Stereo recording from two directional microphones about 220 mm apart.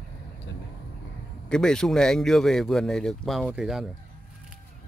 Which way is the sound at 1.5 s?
5° left (ahead or behind).